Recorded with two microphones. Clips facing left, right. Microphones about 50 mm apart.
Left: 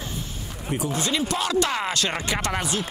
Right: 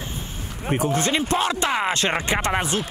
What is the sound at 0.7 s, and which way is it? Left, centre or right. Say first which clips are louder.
Speech: right 4 dB; right.